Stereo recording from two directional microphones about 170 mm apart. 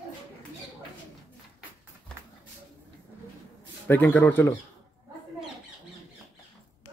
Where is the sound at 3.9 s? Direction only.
10° left (ahead or behind).